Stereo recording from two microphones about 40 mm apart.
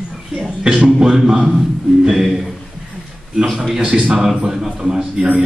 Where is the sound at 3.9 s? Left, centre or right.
Right.